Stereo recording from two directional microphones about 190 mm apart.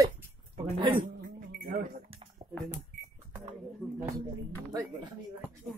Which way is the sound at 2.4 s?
25° right (ahead or behind).